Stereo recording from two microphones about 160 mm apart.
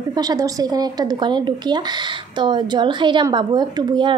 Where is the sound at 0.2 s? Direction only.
25° right (ahead or behind).